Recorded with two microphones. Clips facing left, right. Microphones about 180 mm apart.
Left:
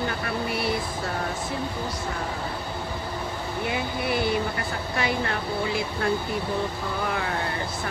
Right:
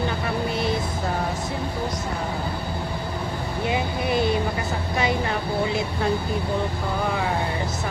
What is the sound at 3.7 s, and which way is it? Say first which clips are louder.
Speech: right 4 dB; 20° right (ahead or behind).